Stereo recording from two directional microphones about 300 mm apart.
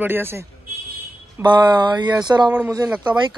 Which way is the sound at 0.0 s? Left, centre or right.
Centre.